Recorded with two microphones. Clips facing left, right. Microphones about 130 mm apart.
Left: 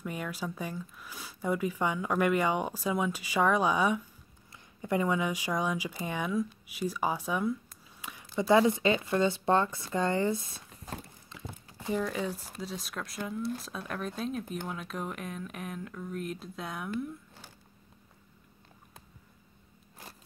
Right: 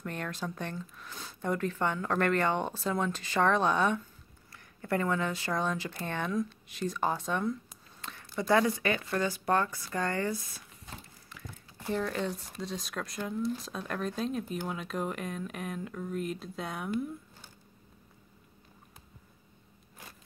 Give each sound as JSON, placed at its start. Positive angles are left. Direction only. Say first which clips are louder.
{"t": 0.0, "sound": "speech", "louder": "left 1 dB", "side_deg": 10}
{"t": 11.2, "sound": "crumpling", "louder": "left 3 dB", "side_deg": 20}
{"t": 12.0, "sound": "speech", "louder": "even", "side_deg": 5}